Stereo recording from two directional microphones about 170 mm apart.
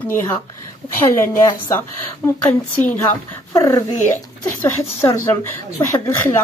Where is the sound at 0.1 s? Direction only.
15° left (ahead or behind).